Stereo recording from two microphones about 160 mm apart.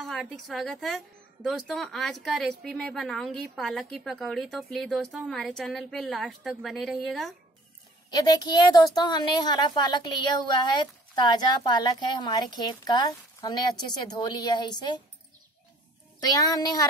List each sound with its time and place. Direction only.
0.0 s a woman's voice: centre (ahead or behind)
8.1 s a woman's voice: 25° left (ahead or behind)
16.3 s a woman's voice: 25° left (ahead or behind)